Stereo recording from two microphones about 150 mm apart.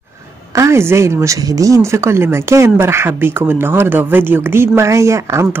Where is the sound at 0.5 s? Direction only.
20° right (ahead or behind).